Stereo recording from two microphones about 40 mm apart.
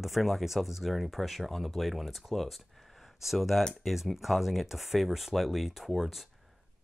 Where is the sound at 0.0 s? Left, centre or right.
Centre.